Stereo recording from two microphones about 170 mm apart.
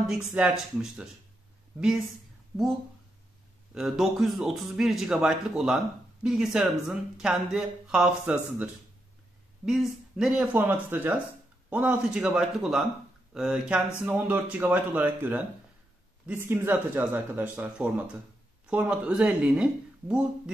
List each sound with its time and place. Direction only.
0.3 s speech: 5° right (ahead or behind)
2.5 s speech: centre (ahead or behind)
9.7 s speech: centre (ahead or behind)